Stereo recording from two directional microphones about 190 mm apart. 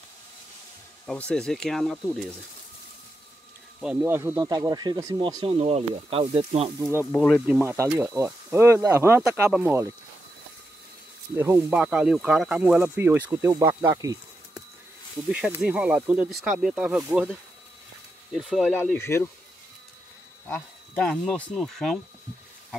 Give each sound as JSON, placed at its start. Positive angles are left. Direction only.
{"t": 1.0, "sound": "speech", "side_deg": 5}
{"t": 3.8, "sound": "speech", "side_deg": -10}
{"t": 6.8, "sound": "speech", "side_deg": -10}
{"t": 7.1, "sound": "speech", "side_deg": 5}
{"t": 7.4, "sound": "speech", "side_deg": -10}
{"t": 11.3, "sound": "speech", "side_deg": -10}
{"t": 15.3, "sound": "speech", "side_deg": -5}
{"t": 18.8, "sound": "speech", "side_deg": 10}
{"t": 20.4, "sound": "speech", "side_deg": 10}